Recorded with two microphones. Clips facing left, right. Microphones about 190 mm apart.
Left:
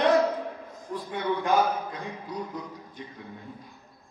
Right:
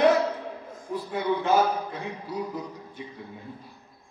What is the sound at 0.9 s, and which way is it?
A man's voice, 10° right (ahead or behind).